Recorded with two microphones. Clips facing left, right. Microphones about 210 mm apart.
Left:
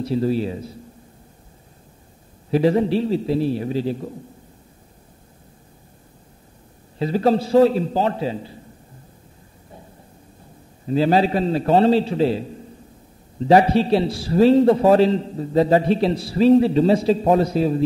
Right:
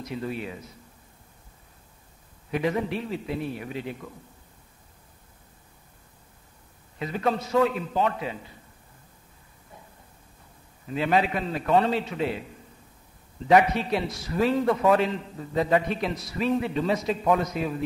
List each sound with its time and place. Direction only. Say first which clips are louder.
0.0 s a man's voice: left 11 dB; 30° left (ahead or behind)
2.5 s a man's voice: left 9 dB; 30° left (ahead or behind)
7.0 s a man's voice: left 9 dB; 30° left (ahead or behind)
10.9 s a man's voice: left 7 dB; 30° left (ahead or behind)